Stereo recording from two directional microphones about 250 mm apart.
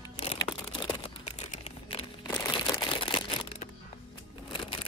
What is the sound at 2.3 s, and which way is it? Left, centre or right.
Music, centre.